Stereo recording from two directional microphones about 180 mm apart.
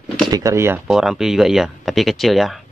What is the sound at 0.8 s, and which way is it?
Speech, 5° right (ahead or behind).